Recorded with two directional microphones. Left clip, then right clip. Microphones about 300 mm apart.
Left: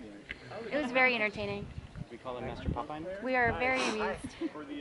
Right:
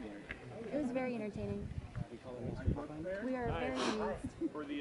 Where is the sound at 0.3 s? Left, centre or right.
Centre.